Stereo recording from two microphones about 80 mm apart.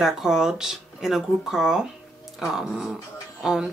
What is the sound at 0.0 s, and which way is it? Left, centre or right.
Speech, centre.